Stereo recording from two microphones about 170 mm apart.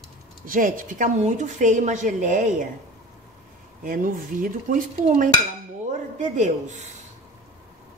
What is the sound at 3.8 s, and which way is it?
A woman's voice, 55° right (ahead or behind).